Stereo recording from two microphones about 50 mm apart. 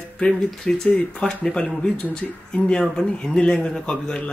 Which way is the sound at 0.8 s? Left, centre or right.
Left.